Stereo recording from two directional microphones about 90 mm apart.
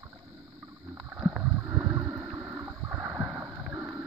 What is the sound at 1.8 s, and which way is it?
Boat, 30° right (ahead or behind).